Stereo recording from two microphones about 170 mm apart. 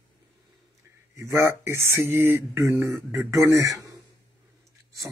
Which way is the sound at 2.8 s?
5° right (ahead or behind).